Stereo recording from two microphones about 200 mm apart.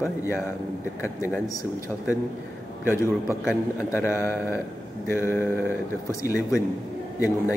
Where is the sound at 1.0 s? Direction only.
15° left (ahead or behind).